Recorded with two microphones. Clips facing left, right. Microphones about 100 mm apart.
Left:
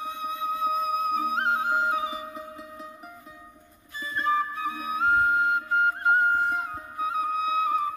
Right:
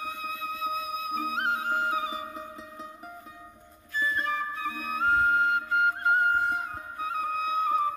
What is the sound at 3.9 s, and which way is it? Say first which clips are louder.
Flute: left 3 dB; 20° left (ahead or behind).